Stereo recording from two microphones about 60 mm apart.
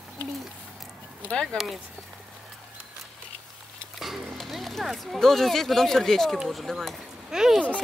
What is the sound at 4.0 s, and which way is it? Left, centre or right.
Speech, centre.